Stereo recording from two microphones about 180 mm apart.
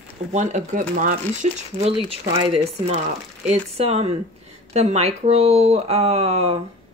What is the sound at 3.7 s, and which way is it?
Speech, 35° right (ahead or behind).